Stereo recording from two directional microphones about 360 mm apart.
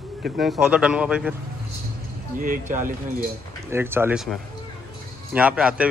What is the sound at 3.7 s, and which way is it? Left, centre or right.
A man's voice, centre.